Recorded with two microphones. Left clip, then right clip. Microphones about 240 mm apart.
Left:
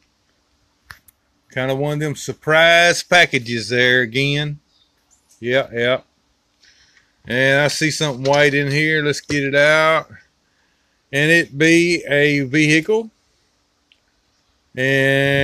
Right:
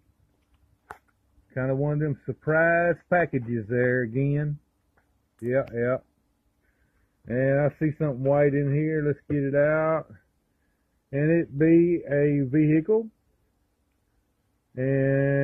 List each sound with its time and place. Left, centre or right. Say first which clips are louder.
1.5 s speech: left 7 dB; left
7.2 s speech: left 9 dB; left
14.7 s speech: left 9 dB; left